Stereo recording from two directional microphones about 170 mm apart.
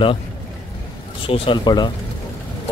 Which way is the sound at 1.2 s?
30° left (ahead or behind).